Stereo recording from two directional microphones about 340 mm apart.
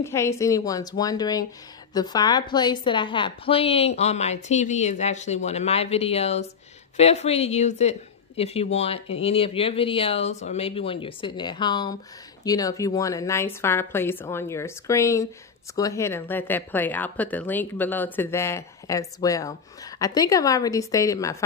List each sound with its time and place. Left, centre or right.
0.0 s a woman's voice: centre